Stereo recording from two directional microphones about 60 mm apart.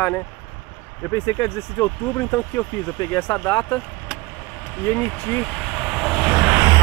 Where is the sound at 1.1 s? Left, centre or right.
Left.